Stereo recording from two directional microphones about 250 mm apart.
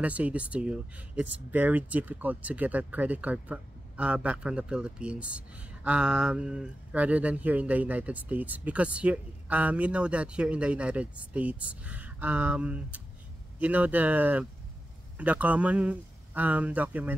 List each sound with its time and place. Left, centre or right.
0.0 s speech: centre